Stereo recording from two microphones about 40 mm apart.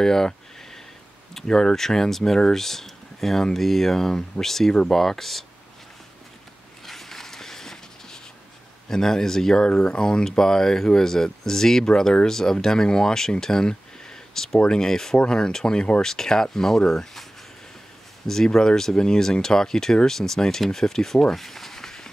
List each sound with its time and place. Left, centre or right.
0.0 s speech: centre
1.3 s speech: centre
6.9 s a sound: centre
8.8 s speech: centre
14.3 s a sound: centre
14.6 s speech: centre